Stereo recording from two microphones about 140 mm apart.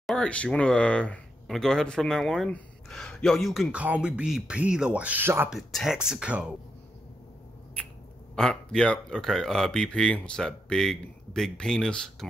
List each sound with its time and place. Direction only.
0.0 s speech: 5° left (ahead or behind); by 5.5 s 15° right (ahead or behind)
5.5 s speech: centre (ahead or behind)
7.8 s a sound: 10° left (ahead or behind)
8.4 s speech: 5° left (ahead or behind)